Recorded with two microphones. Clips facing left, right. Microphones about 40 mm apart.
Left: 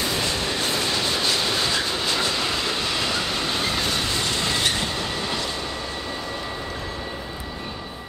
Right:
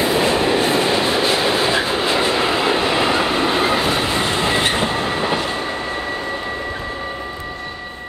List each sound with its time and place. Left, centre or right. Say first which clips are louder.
0.0 s train: right 9 dB; right